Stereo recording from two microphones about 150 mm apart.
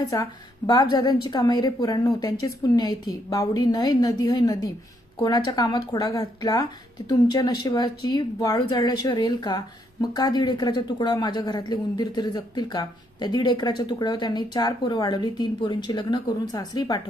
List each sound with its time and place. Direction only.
0.1 s speech: 25° left (ahead or behind)